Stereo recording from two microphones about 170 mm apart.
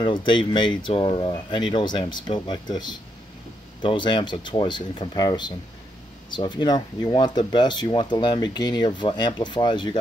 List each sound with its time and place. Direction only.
0.0 s speech: 30° left (ahead or behind)